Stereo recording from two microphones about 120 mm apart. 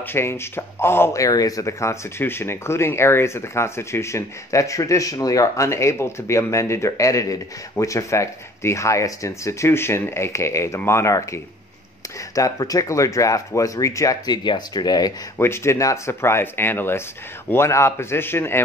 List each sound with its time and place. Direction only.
0.0 s speech: 20° left (ahead or behind)
15.3 s speech: 20° left (ahead or behind)